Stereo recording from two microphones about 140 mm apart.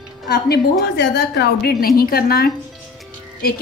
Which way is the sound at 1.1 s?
90° left.